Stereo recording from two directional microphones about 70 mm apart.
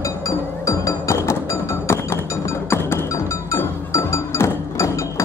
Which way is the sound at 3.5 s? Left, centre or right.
Left.